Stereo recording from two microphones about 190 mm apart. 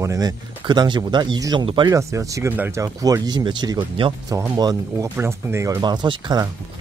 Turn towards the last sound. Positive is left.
turn(degrees=-20)  # may be behind; listen again after turning